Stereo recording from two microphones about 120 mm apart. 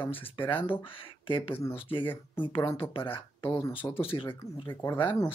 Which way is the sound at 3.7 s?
50° left (ahead or behind).